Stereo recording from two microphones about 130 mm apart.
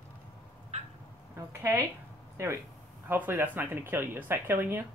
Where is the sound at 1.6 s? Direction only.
25° right (ahead or behind).